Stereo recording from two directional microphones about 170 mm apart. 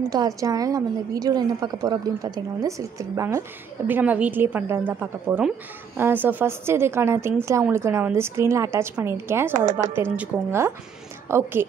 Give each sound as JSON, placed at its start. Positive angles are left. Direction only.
{"t": 0.4, "sound": "a woman's voice", "side_deg": -20}